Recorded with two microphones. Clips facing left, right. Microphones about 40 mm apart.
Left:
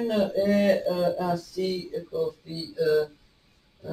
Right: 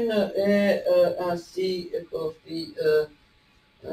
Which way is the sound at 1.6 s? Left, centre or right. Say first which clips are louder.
Right 3 dB; right.